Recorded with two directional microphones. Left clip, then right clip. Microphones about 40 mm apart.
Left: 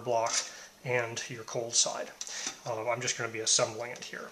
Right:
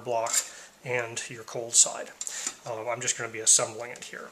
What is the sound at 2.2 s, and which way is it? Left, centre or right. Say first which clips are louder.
Speech: right 2 dB; centre.